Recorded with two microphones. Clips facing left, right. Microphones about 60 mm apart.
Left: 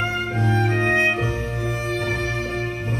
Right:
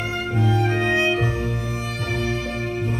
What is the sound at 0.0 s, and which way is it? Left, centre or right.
Music, left.